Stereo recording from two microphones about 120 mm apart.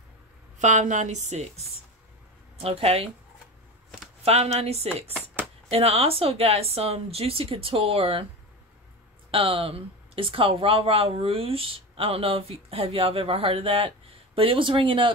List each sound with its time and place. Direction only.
0.6 s a woman's voice: 90° right; by 1.7 s 65° right (ahead or behind)
2.5 s speech: 55° right (ahead or behind)
4.2 s speech: 60° right (ahead or behind)
9.3 s speech: 50° right (ahead or behind)